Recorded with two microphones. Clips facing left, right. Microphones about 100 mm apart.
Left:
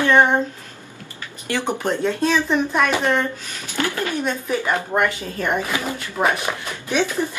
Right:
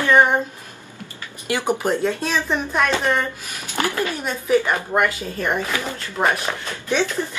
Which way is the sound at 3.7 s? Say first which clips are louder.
Even; 20° right (ahead or behind).